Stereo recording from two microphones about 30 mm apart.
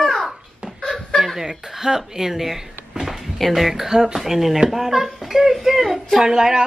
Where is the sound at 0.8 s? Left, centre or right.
Centre.